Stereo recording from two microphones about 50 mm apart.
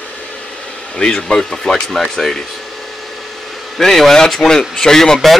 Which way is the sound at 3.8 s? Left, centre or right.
Centre.